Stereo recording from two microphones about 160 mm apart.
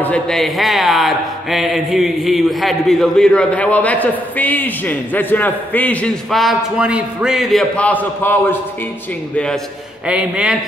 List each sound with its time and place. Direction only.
0.0 s speech: 5° left (ahead or behind)
10.0 s a man's voice: 5° right (ahead or behind)